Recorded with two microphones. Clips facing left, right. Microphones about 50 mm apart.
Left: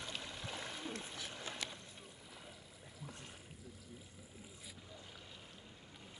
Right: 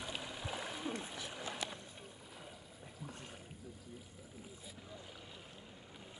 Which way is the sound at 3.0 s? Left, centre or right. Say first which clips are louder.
Right 2 dB; right.